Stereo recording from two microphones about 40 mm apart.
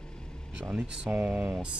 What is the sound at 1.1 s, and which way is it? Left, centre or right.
Speech, right.